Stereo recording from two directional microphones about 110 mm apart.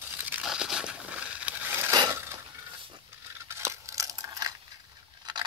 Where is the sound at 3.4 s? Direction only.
25° right (ahead or behind).